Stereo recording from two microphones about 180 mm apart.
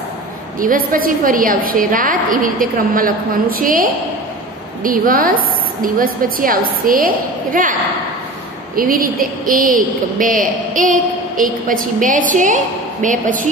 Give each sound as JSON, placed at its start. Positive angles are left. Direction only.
{"t": 0.6, "sound": "a woman's voice", "side_deg": -50}
{"t": 8.7, "sound": "a woman's voice", "side_deg": -50}